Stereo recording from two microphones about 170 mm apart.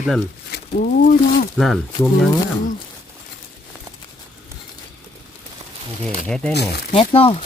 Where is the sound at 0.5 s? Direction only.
60° left (ahead or behind).